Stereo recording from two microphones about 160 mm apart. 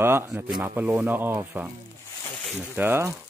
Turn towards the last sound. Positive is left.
turn(degrees=-15)  # may be behind; listen again after turning